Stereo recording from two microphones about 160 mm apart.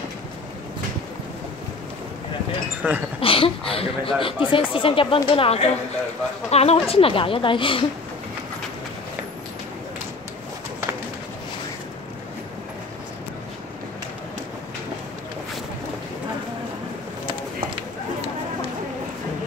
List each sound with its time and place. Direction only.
2.8 s speech: 10° right (ahead or behind)
3.2 s speech: 35° left (ahead or behind)